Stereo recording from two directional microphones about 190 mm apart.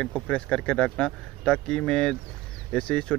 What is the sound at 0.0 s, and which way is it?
Speech, 5° left (ahead or behind).